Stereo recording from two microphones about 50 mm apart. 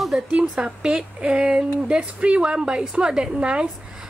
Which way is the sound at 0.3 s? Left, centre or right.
Right.